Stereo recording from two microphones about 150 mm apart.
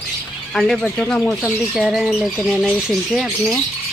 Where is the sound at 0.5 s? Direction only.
Centre (ahead or behind).